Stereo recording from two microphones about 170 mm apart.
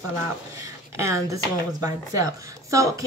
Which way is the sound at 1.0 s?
20° right (ahead or behind).